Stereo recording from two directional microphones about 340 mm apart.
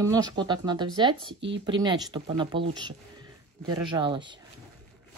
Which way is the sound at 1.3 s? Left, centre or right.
Right.